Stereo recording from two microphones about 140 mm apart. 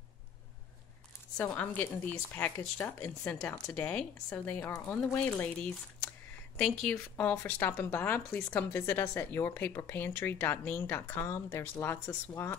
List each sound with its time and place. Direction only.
1.3 s a woman's voice: 10° left (ahead or behind)